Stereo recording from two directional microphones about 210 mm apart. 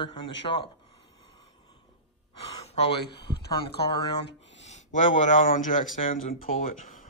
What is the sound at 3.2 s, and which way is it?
Speech, 25° left (ahead or behind).